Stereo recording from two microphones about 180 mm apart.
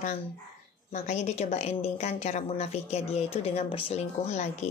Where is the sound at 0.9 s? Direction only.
40° left (ahead or behind).